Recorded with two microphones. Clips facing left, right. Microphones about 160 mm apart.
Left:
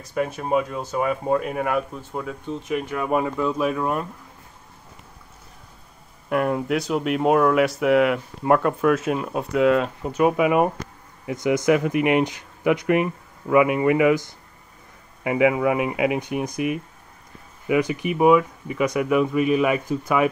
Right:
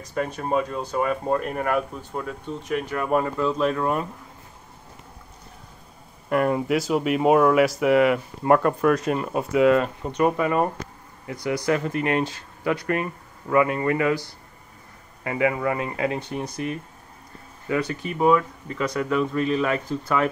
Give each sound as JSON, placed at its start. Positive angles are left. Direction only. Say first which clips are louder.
{"t": 0.1, "sound": "speech", "louder": "left 2 dB", "side_deg": 5}
{"t": 6.2, "sound": "speech", "louder": "right 1 dB", "side_deg": 0}